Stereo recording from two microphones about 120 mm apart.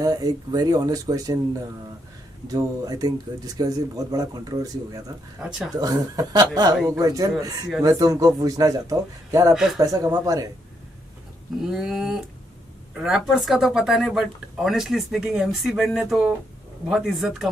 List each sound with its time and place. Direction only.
0.0 s speech: 30° right (ahead or behind)
2.4 s speech: 30° right (ahead or behind)
9.5 s speech: 5° right (ahead or behind)
9.8 s speech: 30° right (ahead or behind)
11.6 s speech: 5° right (ahead or behind)